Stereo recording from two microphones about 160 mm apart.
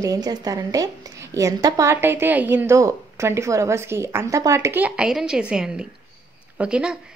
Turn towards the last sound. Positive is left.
turn(degrees=-5)  # may be behind; listen again after turning